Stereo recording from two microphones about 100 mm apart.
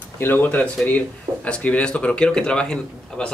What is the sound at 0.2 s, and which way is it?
Speech, 20° left (ahead or behind).